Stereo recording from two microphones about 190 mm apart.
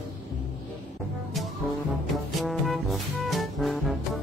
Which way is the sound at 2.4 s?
Centre (ahead or behind).